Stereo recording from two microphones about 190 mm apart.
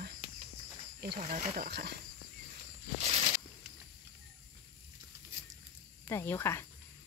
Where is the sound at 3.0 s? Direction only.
35° right (ahead or behind).